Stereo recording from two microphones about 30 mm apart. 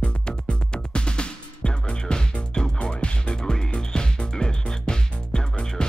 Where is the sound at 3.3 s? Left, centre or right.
Left.